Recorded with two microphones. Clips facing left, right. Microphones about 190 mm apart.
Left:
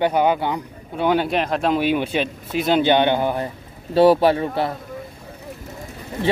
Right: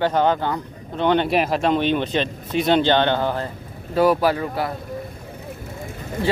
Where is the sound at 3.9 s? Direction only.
30° left (ahead or behind).